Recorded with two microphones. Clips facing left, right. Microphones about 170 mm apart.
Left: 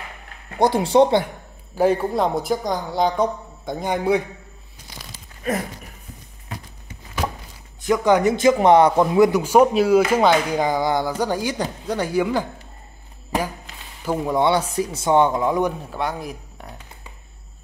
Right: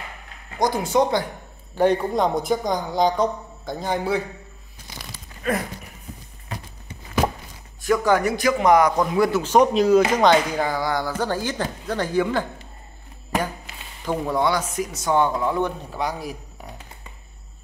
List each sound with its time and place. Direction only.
0.6 s speech: 30° left (ahead or behind)
1.8 s speech: 5° left (ahead or behind)
3.6 s speech: 15° left (ahead or behind)
7.8 s speech: 20° left (ahead or behind)
14.0 s speech: 10° left (ahead or behind)
14.4 s speech: 30° left (ahead or behind); by 15.7 s 15° left (ahead or behind)
15.8 s speech: centre (ahead or behind)